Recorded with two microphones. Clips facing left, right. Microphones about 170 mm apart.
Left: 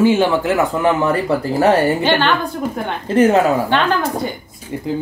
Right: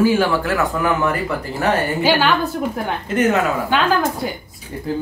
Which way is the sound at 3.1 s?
35° left (ahead or behind).